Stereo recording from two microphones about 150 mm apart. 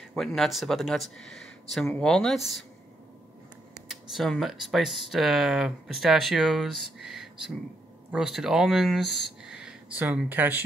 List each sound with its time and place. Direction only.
0.1 s speech: centre (ahead or behind)
3.9 s speech: centre (ahead or behind)